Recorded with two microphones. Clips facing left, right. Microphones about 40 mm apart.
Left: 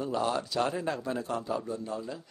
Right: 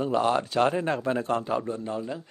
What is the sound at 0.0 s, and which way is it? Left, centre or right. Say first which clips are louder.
A man's voice: right 6 dB; right.